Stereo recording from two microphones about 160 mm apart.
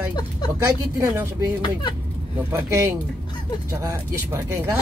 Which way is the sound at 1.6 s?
30° left (ahead or behind).